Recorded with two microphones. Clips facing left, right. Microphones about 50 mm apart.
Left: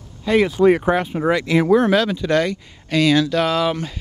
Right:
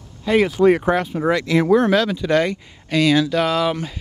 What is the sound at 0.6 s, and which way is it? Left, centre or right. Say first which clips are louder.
Speech: even; centre.